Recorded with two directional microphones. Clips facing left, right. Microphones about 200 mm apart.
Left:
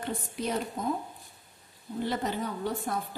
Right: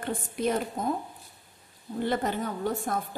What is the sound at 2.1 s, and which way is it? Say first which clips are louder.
Speech: right 3 dB; 50° right (ahead or behind).